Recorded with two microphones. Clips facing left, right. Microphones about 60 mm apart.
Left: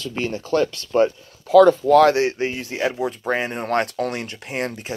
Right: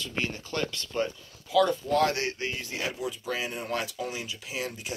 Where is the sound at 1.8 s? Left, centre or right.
Left.